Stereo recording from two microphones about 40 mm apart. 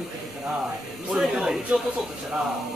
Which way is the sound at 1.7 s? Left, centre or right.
Right.